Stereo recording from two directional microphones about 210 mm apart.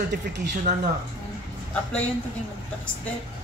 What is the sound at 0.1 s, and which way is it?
Speech, 50° right (ahead or behind).